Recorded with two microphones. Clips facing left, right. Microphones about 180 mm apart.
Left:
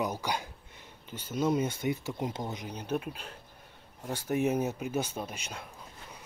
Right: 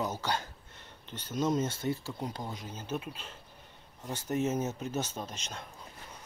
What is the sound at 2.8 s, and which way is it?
Speech, 60° left (ahead or behind).